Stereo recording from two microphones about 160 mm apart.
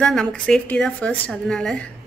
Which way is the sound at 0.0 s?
5° left (ahead or behind).